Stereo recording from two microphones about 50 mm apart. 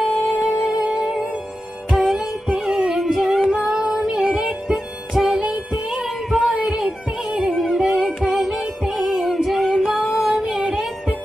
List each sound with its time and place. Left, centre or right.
0.3 s music: centre
0.8 s music: right
3.6 s female singing: centre
4.5 s music: centre
7.9 s music: centre
9.2 s child singing: centre
9.7 s music: centre